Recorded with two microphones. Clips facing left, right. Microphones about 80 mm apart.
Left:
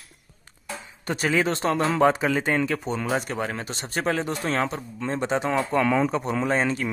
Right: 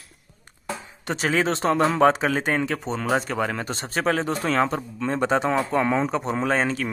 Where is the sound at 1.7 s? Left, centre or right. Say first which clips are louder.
Right 2 dB; right.